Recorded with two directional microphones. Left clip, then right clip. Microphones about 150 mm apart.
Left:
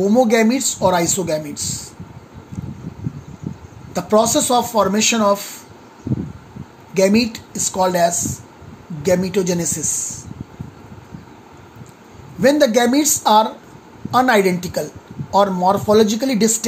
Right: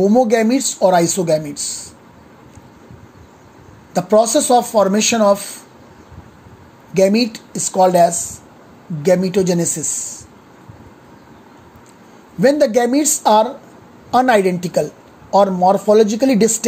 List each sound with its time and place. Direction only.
0.0 s speech: 45° right (ahead or behind)
3.9 s speech: 50° right (ahead or behind)
6.9 s speech: 50° right (ahead or behind)
12.4 s speech: 55° right (ahead or behind)